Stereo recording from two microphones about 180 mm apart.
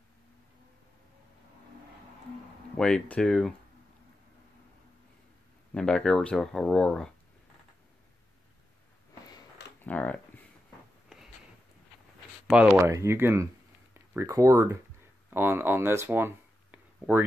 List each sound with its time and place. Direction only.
2.8 s speech: 5° left (ahead or behind)
5.8 s speech: 5° left (ahead or behind)
9.8 s a sound: 10° left (ahead or behind)
12.4 s speech: 5° right (ahead or behind)